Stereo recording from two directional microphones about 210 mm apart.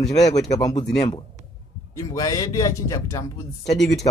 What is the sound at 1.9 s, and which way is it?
A man's voice, 15° left (ahead or behind).